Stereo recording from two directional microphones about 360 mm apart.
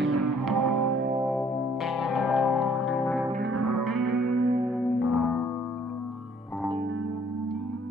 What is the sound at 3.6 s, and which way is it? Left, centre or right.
Music, right.